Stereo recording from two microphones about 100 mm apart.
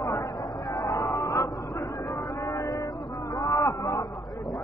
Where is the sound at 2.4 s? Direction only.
30° left (ahead or behind).